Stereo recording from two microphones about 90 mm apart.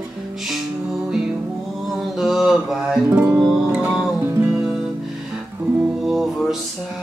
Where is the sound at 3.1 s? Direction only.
20° right (ahead or behind).